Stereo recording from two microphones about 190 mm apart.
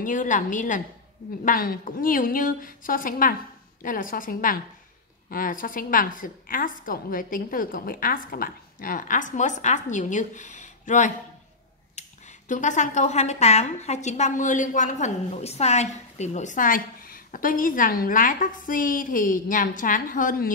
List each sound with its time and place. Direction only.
0.0 s speech: 45° left (ahead or behind)